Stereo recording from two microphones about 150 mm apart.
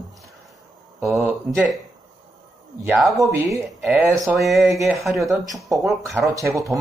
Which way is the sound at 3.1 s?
20° right (ahead or behind).